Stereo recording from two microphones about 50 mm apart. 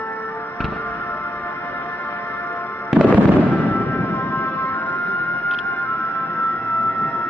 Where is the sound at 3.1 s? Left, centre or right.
Left.